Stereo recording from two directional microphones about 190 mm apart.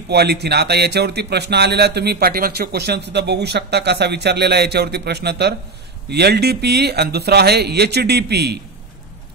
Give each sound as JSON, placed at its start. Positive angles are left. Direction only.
{"t": 0.1, "sound": "a man's voice", "side_deg": -60}